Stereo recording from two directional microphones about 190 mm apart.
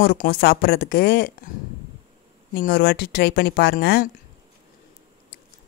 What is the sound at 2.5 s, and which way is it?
Speech, 55° left (ahead or behind).